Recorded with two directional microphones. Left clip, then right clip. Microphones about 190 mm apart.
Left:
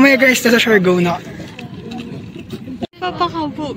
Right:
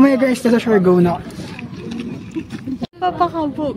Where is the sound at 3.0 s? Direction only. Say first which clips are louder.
Right 2 dB; 50° right (ahead or behind).